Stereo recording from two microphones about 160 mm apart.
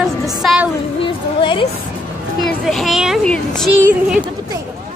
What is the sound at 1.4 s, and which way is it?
Music, 30° left (ahead or behind).